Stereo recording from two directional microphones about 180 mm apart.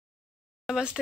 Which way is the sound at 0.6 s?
5° right (ahead or behind).